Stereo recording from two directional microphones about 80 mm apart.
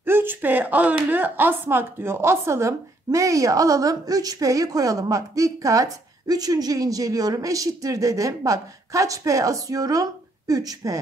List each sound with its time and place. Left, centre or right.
0.0 s speech: right